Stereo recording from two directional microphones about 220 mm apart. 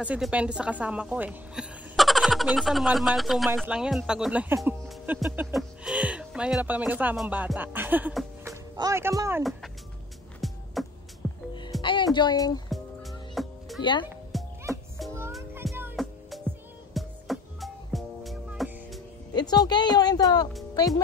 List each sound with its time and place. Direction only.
0.0 s a woman's voice: 5° right (ahead or behind)
8.5 s speech: 15° right (ahead or behind)
9.4 s a woman's voice: centre (ahead or behind)
10.4 s music: centre (ahead or behind)
11.8 s speech: 20° left (ahead or behind)
12.6 s music: centre (ahead or behind)
19.3 s a woman's voice: 20° left (ahead or behind)